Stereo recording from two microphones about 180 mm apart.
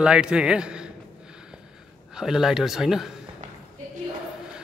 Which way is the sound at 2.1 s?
Centre (ahead or behind).